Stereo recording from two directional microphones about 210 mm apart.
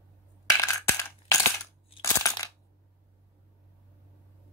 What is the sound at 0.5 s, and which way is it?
Coin, 15° left (ahead or behind).